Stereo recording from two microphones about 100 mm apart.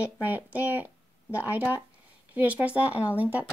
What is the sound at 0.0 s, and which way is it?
Speech, 15° right (ahead or behind).